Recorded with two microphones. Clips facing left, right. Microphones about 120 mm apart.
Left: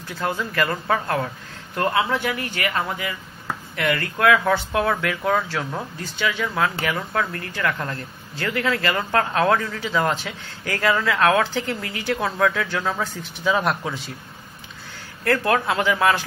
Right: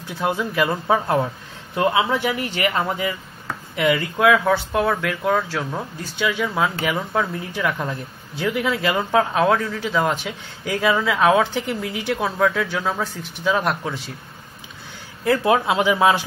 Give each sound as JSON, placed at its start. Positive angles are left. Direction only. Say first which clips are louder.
{"t": 0.2, "sound": "speech", "louder": "right 3 dB", "side_deg": -10}
{"t": 3.7, "sound": "speech", "louder": "right 4 dB", "side_deg": -10}
{"t": 15.2, "sound": "speech", "louder": "right 2 dB", "side_deg": -10}